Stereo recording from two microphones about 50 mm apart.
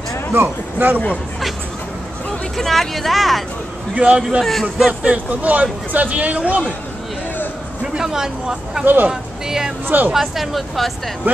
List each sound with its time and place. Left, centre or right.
0.3 s speech: right
2.5 s speech: centre
3.9 s a man's voice: right
4.4 s speech: centre
5.0 s speech: right
8.0 s speech: centre
8.8 s speech: right
9.1 s speech: centre
9.8 s speech: right
10.1 s speech: centre